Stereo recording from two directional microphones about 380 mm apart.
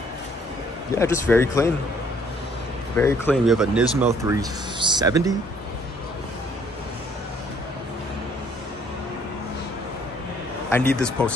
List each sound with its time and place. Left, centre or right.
0.9 s speech: centre
3.0 s speech: centre
10.7 s speech: centre